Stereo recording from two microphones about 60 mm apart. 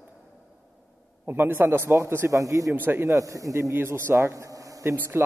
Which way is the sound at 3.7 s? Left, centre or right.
Right.